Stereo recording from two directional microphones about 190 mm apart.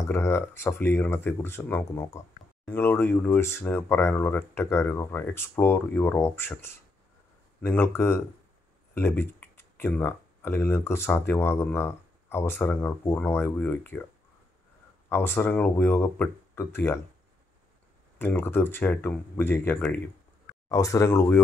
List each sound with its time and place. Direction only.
0.0 s speech: 15° left (ahead or behind)
15.0 s speech: 10° left (ahead or behind)
18.2 s speech: 10° left (ahead or behind)